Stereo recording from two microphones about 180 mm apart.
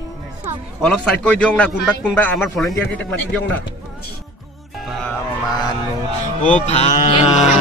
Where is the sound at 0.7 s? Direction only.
5° left (ahead or behind).